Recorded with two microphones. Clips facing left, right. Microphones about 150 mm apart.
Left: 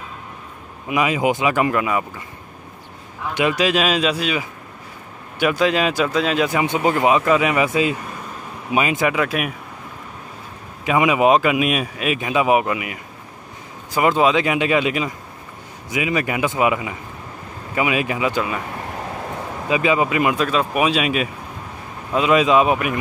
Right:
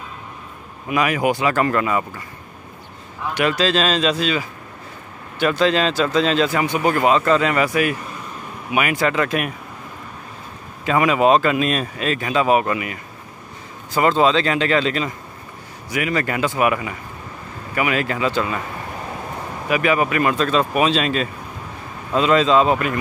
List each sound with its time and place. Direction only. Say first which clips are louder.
0.8 s speech: even; 15° left (ahead or behind)
3.3 s speech: even; 15° left (ahead or behind)
9.1 s speech: right 1 dB; 5° left (ahead or behind)
10.9 s speech: even; 15° left (ahead or behind)
19.7 s speech: even; 20° left (ahead or behind)